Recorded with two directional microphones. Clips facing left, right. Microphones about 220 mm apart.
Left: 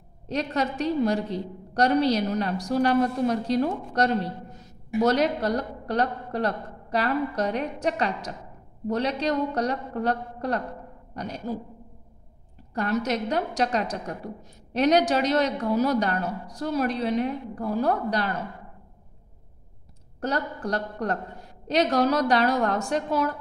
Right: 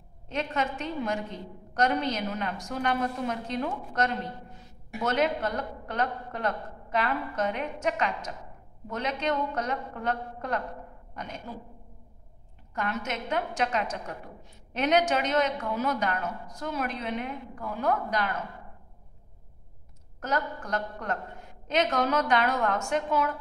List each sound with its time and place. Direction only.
0.3 s a woman's voice: 40° left (ahead or behind)
12.7 s a woman's voice: 35° left (ahead or behind)
20.2 s a woman's voice: 35° left (ahead or behind)